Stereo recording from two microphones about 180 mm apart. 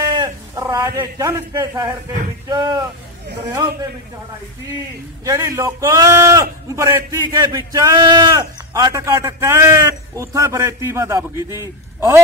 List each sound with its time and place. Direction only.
0.0 s a sound: 20° right (ahead or behind)
2.4 s speech: 25° right (ahead or behind)
5.2 s a man's voice: 15° right (ahead or behind)